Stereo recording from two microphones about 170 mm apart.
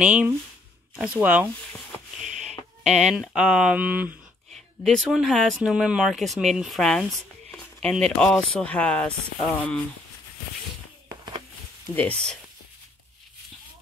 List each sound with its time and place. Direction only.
0.0 s speech: 5° right (ahead or behind)
2.8 s speech: 40° right (ahead or behind)
3.1 s speech: 5° right (ahead or behind)
11.9 s speech: 10° left (ahead or behind)